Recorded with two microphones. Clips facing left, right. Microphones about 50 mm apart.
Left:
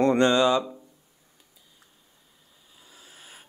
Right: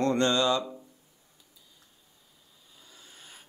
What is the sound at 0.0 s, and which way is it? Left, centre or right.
Speech, left.